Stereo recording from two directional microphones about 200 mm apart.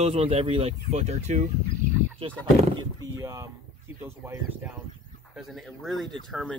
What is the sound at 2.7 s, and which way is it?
Speech, 15° right (ahead or behind).